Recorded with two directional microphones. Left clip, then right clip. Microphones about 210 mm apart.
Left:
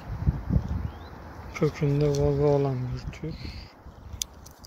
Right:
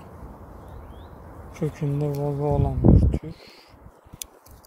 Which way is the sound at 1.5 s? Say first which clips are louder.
Left 3 dB; 5° right (ahead or behind).